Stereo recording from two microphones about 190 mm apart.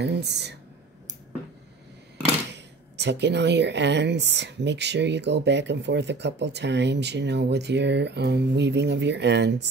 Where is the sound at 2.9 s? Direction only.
65° right (ahead or behind).